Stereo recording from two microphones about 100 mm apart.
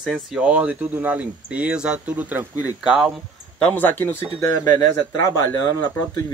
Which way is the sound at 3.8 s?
15° left (ahead or behind).